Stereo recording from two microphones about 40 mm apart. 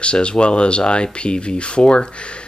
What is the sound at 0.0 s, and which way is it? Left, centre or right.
Speech, left.